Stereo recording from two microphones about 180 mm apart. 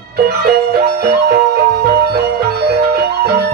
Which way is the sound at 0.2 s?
60° right (ahead or behind).